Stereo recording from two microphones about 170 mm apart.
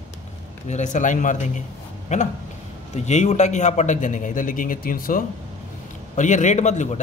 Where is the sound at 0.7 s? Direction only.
45° left (ahead or behind).